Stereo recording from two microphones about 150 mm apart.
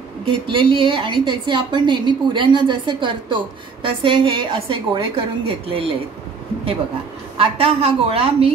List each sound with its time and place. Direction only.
0.2 s a woman's voice: 35° right (ahead or behind)
7.3 s a woman's voice: 40° right (ahead or behind)